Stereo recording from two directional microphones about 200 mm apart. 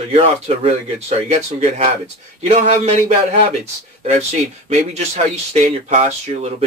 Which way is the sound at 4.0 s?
35° right (ahead or behind).